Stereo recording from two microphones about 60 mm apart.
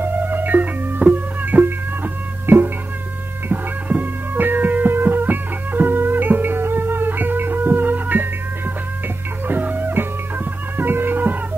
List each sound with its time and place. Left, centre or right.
0.0 s music: right
9.5 s music: right